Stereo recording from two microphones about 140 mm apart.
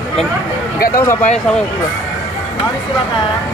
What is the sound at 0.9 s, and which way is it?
Speech, 20° left (ahead or behind).